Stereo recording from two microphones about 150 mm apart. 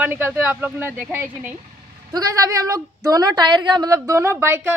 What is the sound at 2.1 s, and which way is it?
A woman's voice, 25° right (ahead or behind).